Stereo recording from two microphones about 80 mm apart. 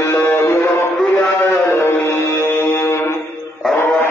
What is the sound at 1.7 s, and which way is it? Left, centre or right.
Music, left.